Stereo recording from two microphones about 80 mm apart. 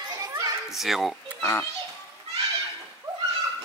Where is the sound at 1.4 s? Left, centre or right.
Left.